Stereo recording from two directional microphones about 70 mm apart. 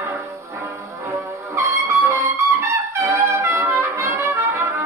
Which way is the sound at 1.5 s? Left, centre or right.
Right.